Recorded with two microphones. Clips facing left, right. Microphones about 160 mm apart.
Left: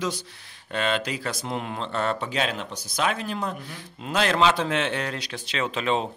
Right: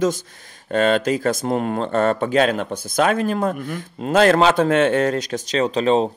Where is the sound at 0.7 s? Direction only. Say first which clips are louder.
Right 9 dB; 45° right (ahead or behind).